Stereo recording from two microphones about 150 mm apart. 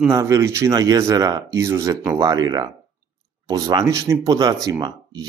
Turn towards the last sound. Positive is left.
turn(degrees=-25)  # may be behind; listen again after turning